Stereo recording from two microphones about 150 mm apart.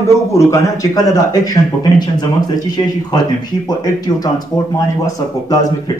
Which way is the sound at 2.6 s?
25° left (ahead or behind).